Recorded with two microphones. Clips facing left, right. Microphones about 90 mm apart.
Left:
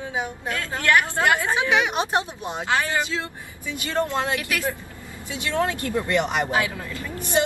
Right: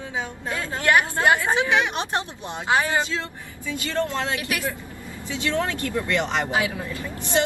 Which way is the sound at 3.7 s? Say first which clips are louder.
Left 1 dB; 20° left (ahead or behind).